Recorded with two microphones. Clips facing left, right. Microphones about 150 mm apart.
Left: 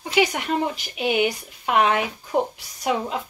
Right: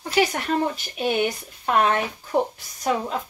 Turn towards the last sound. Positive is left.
turn(degrees=10)  # may be behind; listen again after turning